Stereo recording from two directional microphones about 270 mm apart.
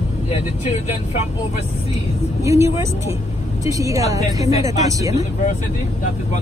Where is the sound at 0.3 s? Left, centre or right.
Left.